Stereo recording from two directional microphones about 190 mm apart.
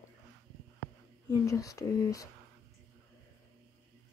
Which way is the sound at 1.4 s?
15° left (ahead or behind).